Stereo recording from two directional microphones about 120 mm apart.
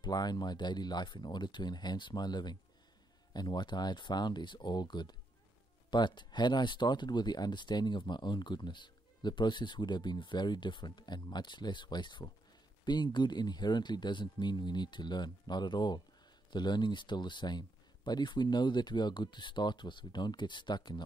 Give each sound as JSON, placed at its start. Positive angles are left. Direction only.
{"t": 0.0, "sound": "speech", "side_deg": 35}